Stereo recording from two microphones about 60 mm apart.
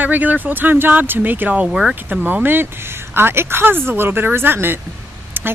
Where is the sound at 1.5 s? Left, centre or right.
Centre.